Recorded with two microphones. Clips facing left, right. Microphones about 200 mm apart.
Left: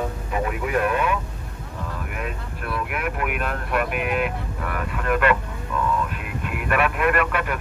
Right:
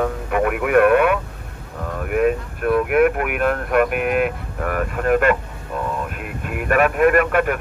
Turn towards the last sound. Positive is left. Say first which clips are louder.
# right 6 dB
turn(degrees=-50)  # may be behind; listen again after turning